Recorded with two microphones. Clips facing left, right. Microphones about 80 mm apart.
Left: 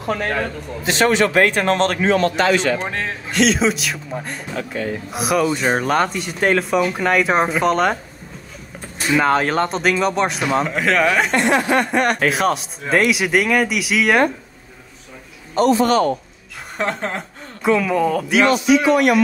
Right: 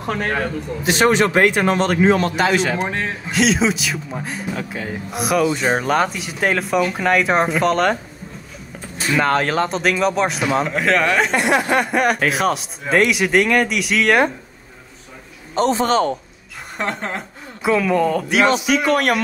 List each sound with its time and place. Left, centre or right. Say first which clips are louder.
0.8 s a man's voice: right 1 dB; centre
9.1 s a man's voice: left 1 dB; centre
15.5 s a man's voice: left 2 dB; right
16.7 s speech: left 2 dB; centre
18.9 s speech: left 2 dB; right